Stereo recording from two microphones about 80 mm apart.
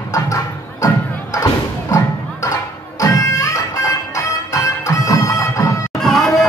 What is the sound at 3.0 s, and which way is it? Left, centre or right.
Music, left.